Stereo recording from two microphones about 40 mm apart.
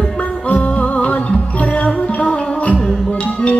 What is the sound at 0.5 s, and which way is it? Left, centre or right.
Music, left.